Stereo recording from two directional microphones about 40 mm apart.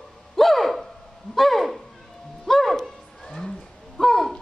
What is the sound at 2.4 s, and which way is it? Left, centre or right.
Music, centre.